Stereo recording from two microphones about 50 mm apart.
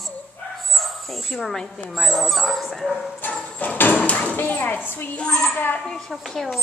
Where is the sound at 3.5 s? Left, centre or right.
Left.